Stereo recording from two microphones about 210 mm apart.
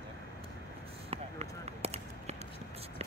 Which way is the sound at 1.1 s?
30° right (ahead or behind).